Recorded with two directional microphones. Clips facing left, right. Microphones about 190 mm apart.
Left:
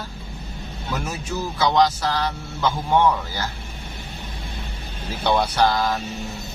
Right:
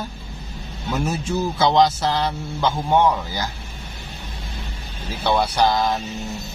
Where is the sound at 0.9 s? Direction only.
30° right (ahead or behind).